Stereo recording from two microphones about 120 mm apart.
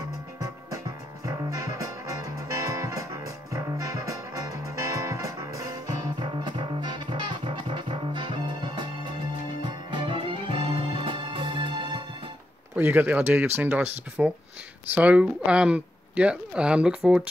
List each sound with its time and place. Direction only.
0.0 s music: 30° right (ahead or behind)
12.7 s speech: 15° right (ahead or behind)